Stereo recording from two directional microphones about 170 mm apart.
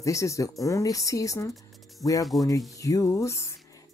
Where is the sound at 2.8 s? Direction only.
20° left (ahead or behind).